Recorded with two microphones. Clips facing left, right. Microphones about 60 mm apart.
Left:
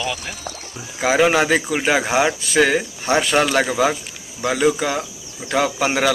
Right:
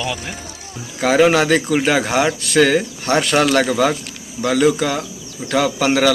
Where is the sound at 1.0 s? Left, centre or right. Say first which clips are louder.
Right 2 dB; centre.